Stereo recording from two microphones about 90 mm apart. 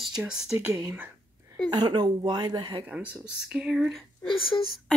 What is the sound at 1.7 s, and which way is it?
Speech, 50° right (ahead or behind).